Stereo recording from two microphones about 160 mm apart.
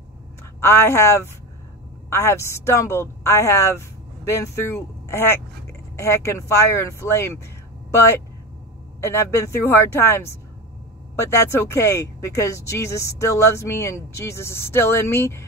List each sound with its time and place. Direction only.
0.6 s a woman's voice: 15° left (ahead or behind)
9.0 s speech: 15° left (ahead or behind)